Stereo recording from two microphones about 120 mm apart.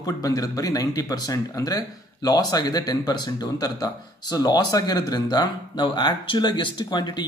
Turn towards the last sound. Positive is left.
turn(degrees=40)  # may be behind; listen again after turning